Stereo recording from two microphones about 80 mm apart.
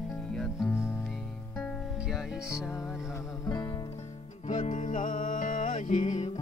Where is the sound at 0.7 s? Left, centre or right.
Left.